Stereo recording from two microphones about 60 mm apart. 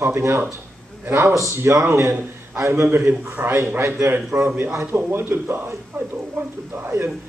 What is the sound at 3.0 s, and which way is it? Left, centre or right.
Speech, centre.